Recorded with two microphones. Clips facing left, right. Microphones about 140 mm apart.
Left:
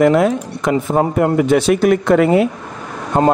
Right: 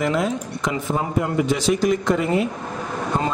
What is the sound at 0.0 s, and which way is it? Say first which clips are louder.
Speech: left 9 dB; 55° left (ahead or behind).